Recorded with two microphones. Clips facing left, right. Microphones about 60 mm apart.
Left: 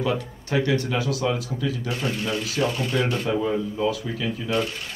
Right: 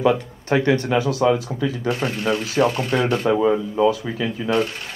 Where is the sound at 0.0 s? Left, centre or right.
Right.